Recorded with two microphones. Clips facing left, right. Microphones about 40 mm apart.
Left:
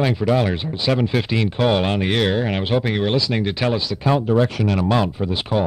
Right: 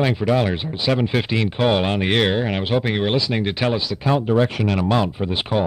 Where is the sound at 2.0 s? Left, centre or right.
Right.